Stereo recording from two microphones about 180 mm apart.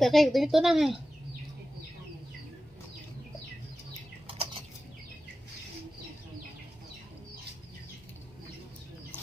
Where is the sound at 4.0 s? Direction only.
30° right (ahead or behind).